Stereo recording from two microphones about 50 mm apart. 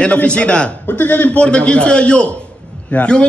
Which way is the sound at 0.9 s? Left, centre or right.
Left.